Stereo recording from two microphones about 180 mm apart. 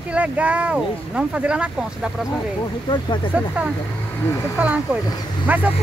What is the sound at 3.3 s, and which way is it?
Speech, 10° right (ahead or behind).